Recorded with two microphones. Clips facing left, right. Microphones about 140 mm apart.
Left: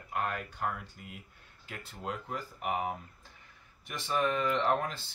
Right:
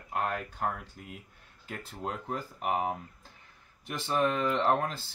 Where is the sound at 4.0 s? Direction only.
35° right (ahead or behind).